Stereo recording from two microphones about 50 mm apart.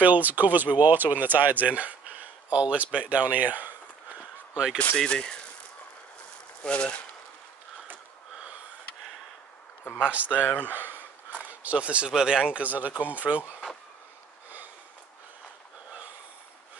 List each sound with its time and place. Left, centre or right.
0.0 s speech: right
4.9 s speech: centre
6.6 s speech: left
10.0 s speech: right
10.4 s speech: left
10.7 s a sound: right
11.6 s speech: right